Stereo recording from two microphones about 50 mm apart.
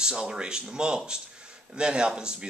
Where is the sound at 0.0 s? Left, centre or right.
Centre.